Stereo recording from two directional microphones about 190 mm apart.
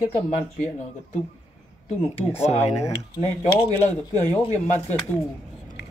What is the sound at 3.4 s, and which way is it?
Speech, 35° left (ahead or behind).